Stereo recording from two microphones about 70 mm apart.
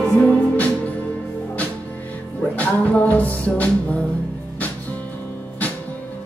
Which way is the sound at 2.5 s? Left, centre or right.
Left.